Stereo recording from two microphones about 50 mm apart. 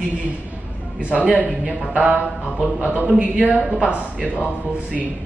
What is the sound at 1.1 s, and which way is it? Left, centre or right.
Speech, left.